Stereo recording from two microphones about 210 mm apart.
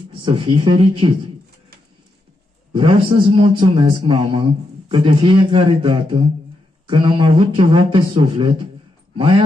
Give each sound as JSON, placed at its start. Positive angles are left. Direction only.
{"t": 0.2, "sound": "speech", "side_deg": -25}
{"t": 2.7, "sound": "speech", "side_deg": -25}